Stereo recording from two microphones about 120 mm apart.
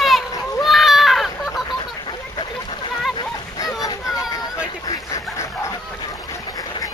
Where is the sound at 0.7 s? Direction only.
Centre (ahead or behind).